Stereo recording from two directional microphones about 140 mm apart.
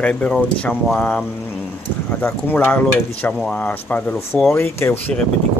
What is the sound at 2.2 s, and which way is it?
Speech, 15° left (ahead or behind).